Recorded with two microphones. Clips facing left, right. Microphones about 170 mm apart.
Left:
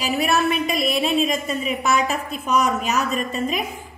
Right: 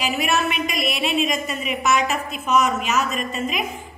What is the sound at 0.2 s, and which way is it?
A woman's voice, 35° left (ahead or behind).